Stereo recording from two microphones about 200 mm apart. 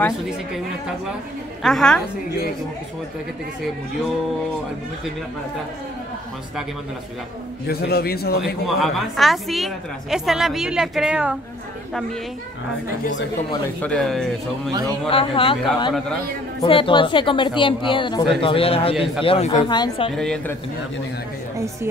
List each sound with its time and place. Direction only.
1.6 s a woman's voice: centre (ahead or behind)
7.6 s a man's voice: 50° left (ahead or behind)
8.6 s a woman's voice: centre (ahead or behind)
13.7 s a woman's voice: 5° left (ahead or behind)
15.0 s speech: 25° left (ahead or behind)
20.2 s a woman's voice: centre (ahead or behind)